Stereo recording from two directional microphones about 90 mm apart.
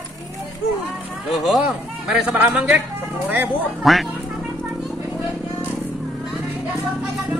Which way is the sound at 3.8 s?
Centre (ahead or behind).